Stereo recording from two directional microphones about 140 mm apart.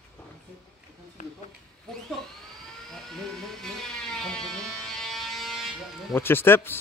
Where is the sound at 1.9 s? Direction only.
5° left (ahead or behind).